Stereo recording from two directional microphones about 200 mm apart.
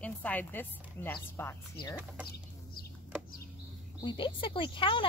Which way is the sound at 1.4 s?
10° left (ahead or behind).